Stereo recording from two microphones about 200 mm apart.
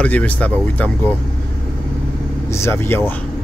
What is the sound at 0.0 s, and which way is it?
Speech, 5° left (ahead or behind).